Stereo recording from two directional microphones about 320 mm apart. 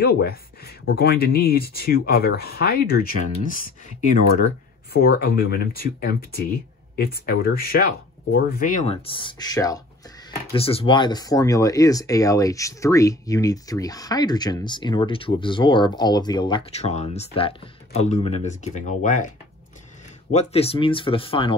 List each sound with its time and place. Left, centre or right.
0.0 s speech: left
5.0 s speech: left
20.3 s speech: centre